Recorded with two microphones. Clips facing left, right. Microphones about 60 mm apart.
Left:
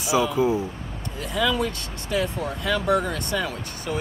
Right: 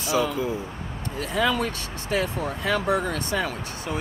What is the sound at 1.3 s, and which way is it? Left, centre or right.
Speech, right.